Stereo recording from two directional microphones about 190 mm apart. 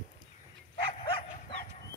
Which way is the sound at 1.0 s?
30° left (ahead or behind).